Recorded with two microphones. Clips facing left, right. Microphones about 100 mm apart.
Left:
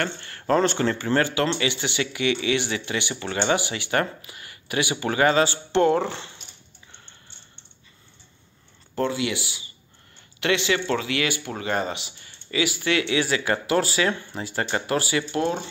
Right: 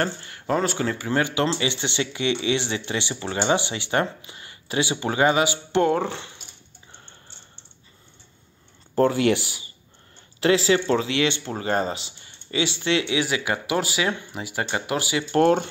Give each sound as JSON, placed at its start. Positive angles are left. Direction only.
{"t": 0.2, "sound": "speech", "side_deg": -10}
{"t": 8.9, "sound": "speech", "side_deg": -45}
{"t": 10.4, "sound": "speech", "side_deg": -35}
{"t": 15.3, "sound": "speech", "side_deg": -55}